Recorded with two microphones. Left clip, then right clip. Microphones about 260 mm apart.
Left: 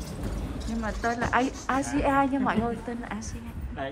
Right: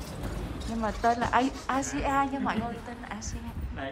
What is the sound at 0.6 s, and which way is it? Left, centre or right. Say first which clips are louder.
A woman's voice: right 3 dB; centre.